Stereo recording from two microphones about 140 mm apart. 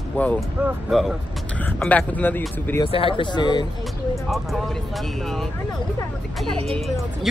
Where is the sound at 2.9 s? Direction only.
40° left (ahead or behind).